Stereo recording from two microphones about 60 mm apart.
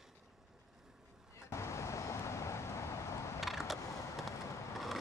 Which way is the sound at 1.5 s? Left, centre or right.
Left.